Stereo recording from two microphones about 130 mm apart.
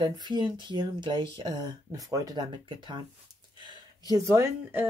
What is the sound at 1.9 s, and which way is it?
Speech, 25° right (ahead or behind).